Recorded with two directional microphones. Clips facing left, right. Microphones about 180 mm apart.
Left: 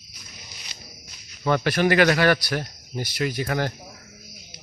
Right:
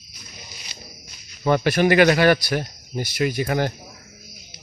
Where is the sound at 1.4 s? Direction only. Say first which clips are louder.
Right 3 dB; 15° right (ahead or behind).